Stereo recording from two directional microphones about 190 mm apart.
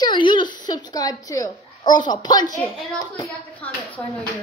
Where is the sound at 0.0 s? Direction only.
25° left (ahead or behind).